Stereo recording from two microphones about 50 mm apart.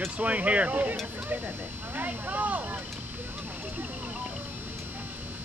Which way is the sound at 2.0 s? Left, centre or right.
Right.